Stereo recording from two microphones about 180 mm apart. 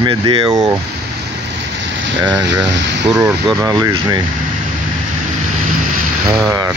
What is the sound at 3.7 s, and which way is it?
Speech, 20° right (ahead or behind).